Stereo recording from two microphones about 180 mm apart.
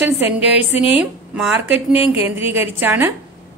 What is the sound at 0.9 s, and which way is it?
A woman's voice, 5° right (ahead or behind).